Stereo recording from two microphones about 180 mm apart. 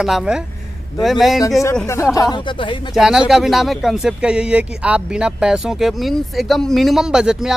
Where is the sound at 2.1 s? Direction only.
25° left (ahead or behind).